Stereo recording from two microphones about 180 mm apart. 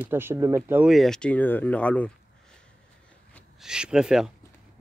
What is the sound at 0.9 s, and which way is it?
Speech, 5° left (ahead or behind).